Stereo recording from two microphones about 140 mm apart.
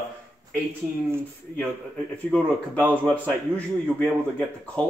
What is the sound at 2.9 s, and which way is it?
Speech, 10° left (ahead or behind).